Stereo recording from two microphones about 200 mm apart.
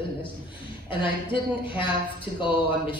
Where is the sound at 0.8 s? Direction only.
25° left (ahead or behind).